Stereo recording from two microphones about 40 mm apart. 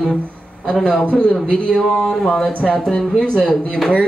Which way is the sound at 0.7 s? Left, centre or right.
Centre.